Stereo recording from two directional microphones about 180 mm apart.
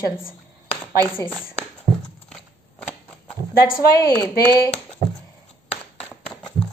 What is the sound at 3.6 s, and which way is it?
Speech, 55° left (ahead or behind).